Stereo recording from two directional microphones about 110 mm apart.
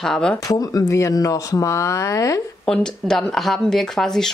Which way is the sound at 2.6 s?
5° left (ahead or behind).